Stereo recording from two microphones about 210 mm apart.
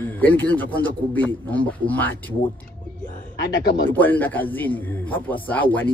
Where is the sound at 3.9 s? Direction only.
10° left (ahead or behind).